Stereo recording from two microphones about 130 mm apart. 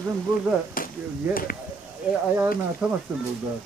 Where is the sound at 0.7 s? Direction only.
90° left.